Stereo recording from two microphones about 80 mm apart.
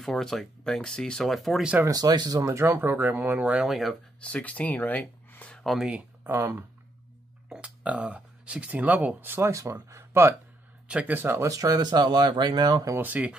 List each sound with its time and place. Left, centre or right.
0.2 s speech: centre
1.9 s speech: right; by 3.6 s centre
3.6 s speech: centre
4.2 s speech: centre
5.8 s speech: centre
6.2 s speech: right
7.4 s speech: centre; by 10.3 s right
10.9 s speech: centre
11.5 s speech: right
12.9 s speech: right